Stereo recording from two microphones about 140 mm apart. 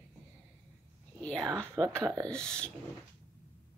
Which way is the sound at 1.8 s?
Centre (ahead or behind).